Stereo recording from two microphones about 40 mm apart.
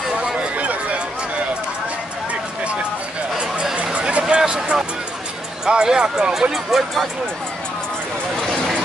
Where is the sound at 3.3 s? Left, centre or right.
Right.